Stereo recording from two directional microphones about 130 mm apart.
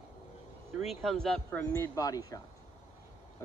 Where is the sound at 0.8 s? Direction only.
Centre (ahead or behind).